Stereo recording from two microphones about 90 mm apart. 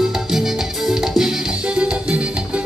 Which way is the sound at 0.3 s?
5° right (ahead or behind).